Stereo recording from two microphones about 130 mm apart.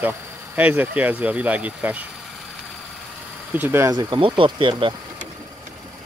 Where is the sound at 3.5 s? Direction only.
15° right (ahead or behind).